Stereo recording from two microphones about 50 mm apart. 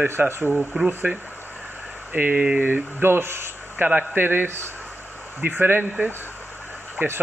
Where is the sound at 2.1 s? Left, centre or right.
Right.